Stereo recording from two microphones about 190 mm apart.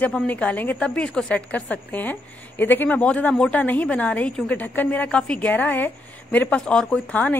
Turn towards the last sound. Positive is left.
turn(degrees=5)  # may be behind; listen again after turning